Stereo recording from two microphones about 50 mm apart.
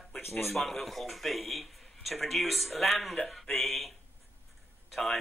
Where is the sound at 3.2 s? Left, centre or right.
Centre.